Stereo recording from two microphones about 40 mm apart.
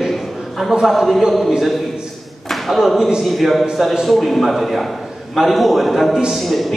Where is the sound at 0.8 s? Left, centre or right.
Centre.